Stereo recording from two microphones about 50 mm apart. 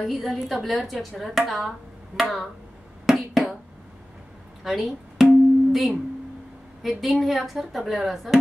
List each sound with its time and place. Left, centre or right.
0.0 s speech: centre
3.1 s a sound: centre
4.6 s music: centre
6.8 s speech: centre